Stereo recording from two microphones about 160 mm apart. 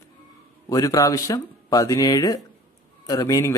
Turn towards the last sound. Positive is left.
turn(degrees=20)  # may be behind; listen again after turning